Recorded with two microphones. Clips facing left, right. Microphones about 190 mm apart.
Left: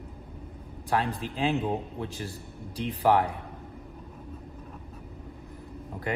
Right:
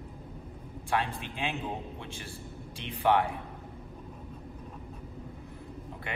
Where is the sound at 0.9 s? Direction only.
40° left (ahead or behind).